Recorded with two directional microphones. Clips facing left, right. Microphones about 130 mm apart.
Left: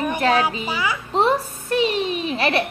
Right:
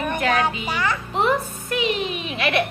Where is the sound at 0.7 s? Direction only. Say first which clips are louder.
Even; 10° left (ahead or behind).